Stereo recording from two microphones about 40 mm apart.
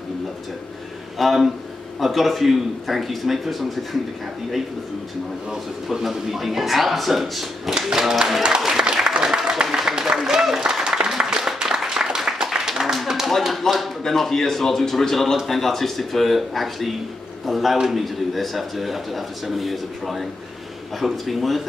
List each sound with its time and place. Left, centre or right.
1.1 s a man's voice: centre
5.5 s a man's voice: centre
8.4 s speech: centre
8.6 s applause: centre
11.6 s a sound: centre
13.3 s a man's voice: centre